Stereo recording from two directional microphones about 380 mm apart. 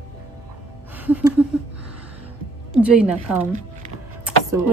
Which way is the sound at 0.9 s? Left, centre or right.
Centre.